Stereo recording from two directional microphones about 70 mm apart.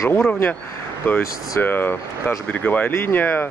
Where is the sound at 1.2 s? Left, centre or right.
Left.